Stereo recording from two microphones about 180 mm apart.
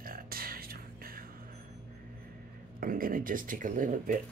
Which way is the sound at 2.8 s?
50° right (ahead or behind).